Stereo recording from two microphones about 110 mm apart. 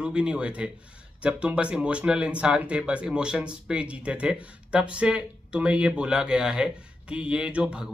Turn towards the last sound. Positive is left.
turn(degrees=-10)  # may be behind; listen again after turning